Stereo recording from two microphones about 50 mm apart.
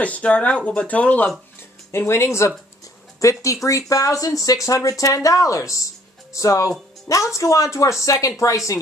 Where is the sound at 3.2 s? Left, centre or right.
Left.